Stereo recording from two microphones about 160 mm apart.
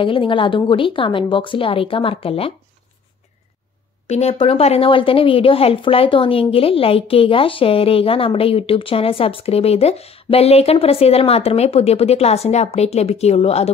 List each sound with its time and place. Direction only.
0.0 s a woman's voice: 30° left (ahead or behind)
4.1 s a woman's voice: 40° left (ahead or behind)